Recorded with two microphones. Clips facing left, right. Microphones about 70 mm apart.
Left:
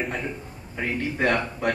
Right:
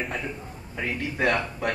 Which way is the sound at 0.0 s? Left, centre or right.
Centre.